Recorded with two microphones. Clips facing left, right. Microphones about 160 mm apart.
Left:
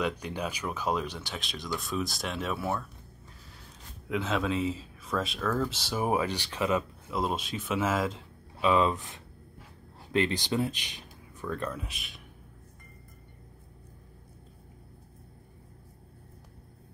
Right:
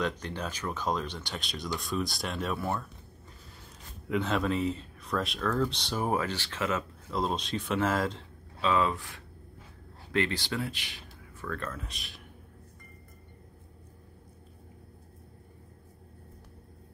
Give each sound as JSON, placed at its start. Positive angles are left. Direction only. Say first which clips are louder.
{"t": 0.0, "sound": "speech", "louder": "left 1 dB", "side_deg": 10}
{"t": 4.1, "sound": "speech", "louder": "right 1 dB", "side_deg": 0}
{"t": 7.2, "sound": "speech", "louder": "even", "side_deg": 5}
{"t": 11.9, "sound": "speech", "louder": "even", "side_deg": 0}